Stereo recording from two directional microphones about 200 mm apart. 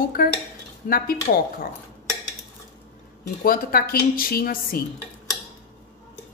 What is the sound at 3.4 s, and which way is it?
A woman's voice, 45° left (ahead or behind).